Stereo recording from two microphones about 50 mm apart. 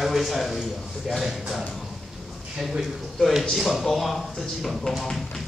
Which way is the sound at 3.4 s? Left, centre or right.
Centre.